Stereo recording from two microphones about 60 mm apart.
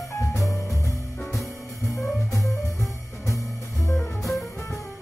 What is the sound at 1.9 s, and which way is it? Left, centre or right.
Music, left.